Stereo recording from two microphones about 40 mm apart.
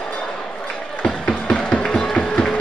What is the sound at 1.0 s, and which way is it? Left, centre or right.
Music, left.